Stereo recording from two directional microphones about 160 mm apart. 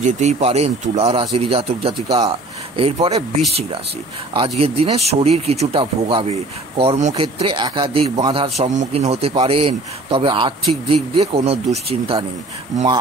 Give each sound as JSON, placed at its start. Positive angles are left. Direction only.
{"t": 0.0, "sound": "speech", "side_deg": -45}
{"t": 4.3, "sound": "speech", "side_deg": -35}
{"t": 6.8, "sound": "speech", "side_deg": -45}
{"t": 8.6, "sound": "speech", "side_deg": -50}